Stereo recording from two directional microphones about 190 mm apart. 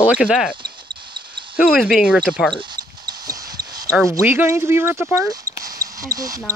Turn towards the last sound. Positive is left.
turn(degrees=-20)  # may be behind; listen again after turning